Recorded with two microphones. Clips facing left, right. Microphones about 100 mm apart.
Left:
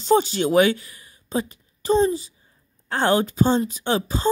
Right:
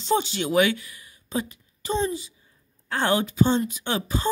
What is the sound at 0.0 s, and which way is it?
A woman's voice, 40° left (ahead or behind).